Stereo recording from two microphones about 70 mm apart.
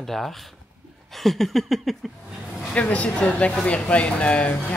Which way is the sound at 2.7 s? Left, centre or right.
Centre.